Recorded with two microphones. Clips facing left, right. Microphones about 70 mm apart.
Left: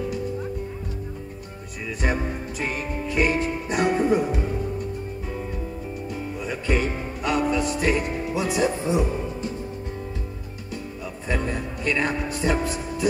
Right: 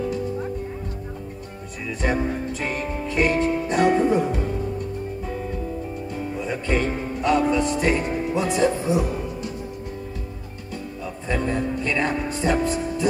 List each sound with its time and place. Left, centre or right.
2.6 s music: centre
6.4 s music: centre
8.8 s music: left
11.2 s music: centre